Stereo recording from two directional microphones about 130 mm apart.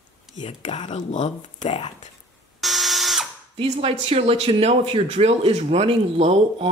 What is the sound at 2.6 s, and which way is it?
Drill, centre (ahead or behind).